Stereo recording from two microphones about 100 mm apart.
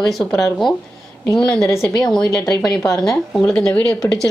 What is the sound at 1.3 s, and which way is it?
A woman's voice, centre (ahead or behind).